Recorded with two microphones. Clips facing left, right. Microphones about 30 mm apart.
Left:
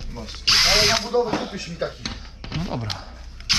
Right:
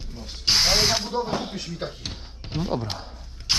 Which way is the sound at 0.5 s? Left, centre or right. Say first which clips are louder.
Left 3 dB; left.